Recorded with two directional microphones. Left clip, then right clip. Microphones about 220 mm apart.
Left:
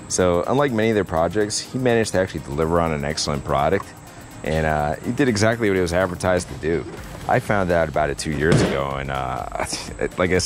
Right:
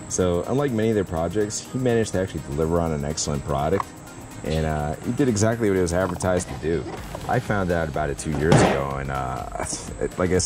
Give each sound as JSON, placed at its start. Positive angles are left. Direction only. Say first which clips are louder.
{"t": 0.1, "sound": "speech", "louder": "left 4 dB", "side_deg": 0}
{"t": 0.7, "sound": "speech", "louder": "left 3 dB", "side_deg": 20}
{"t": 2.5, "sound": "speech", "louder": "left 3 dB", "side_deg": 0}